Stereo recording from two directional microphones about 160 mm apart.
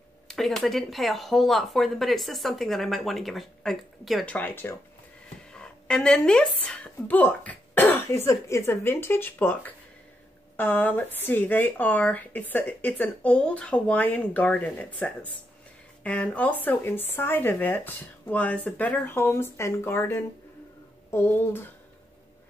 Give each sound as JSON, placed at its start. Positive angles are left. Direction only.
{"t": 0.3, "sound": "speech", "side_deg": 5}